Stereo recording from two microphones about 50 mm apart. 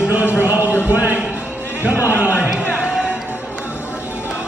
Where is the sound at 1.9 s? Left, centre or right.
Left.